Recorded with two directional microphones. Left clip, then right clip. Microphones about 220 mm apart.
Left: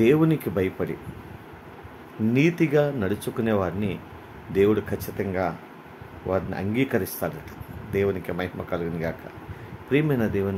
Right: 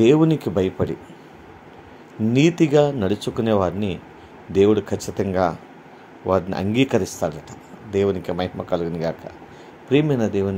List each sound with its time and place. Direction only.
0.0 s speech: 20° right (ahead or behind)
2.3 s speech: 20° right (ahead or behind)